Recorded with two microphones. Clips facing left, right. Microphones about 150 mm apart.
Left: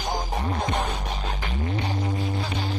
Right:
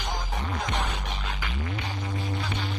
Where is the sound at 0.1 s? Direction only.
35° left (ahead or behind).